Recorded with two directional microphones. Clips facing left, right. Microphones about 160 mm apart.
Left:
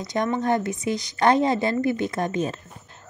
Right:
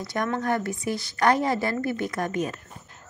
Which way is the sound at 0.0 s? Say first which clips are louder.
Left 3 dB; 20° left (ahead or behind).